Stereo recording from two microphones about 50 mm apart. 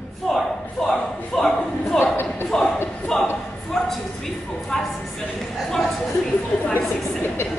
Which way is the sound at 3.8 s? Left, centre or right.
Centre.